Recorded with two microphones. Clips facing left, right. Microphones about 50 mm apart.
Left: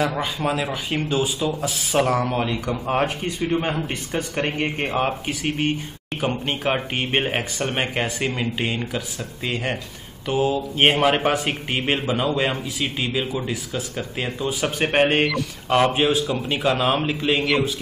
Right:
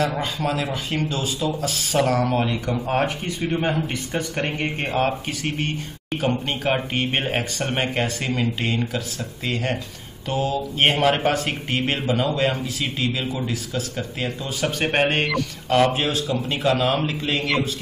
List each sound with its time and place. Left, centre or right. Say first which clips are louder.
0.0 s speech: even; centre